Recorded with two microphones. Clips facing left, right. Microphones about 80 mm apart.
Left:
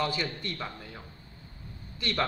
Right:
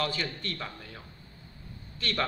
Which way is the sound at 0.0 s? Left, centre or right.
Centre.